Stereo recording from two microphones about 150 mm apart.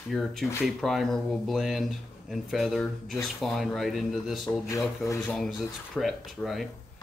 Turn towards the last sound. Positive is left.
turn(degrees=0)  # may be behind; listen again after turning